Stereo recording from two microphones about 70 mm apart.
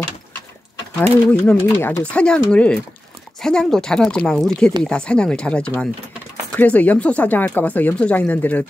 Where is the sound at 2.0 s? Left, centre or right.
Centre.